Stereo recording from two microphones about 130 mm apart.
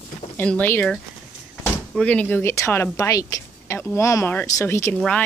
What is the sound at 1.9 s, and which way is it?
Speech, 10° left (ahead or behind).